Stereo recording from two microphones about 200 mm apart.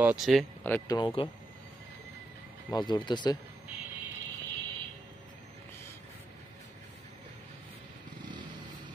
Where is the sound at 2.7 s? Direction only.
20° left (ahead or behind).